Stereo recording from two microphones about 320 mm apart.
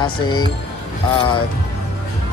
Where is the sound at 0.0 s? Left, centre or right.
Centre.